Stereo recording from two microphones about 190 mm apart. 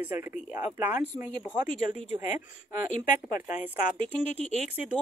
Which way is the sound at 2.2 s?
45° left (ahead or behind).